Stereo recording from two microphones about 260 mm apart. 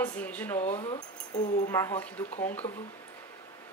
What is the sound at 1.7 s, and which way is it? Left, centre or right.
Speech, centre.